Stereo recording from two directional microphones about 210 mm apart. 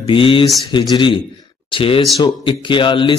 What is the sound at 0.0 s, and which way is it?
A man's voice, 25° left (ahead or behind).